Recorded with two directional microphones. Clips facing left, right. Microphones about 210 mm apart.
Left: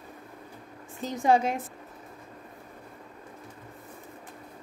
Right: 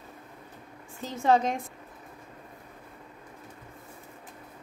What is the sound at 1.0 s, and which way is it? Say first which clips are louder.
Speech: left 1 dB; 15° left (ahead or behind).